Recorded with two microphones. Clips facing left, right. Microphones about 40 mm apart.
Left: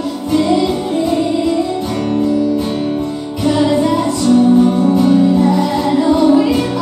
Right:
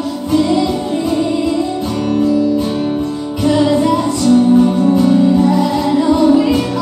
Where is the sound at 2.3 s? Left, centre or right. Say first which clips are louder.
Right 1 dB; left.